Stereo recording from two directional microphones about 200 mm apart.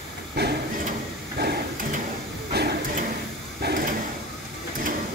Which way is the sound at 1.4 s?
50° right (ahead or behind).